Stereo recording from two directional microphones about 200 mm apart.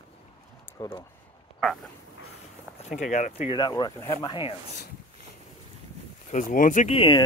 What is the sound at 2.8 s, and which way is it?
Speech, 35° left (ahead or behind).